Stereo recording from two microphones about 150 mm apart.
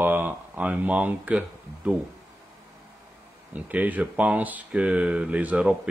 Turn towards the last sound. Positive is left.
turn(degrees=-10)  # may be behind; listen again after turning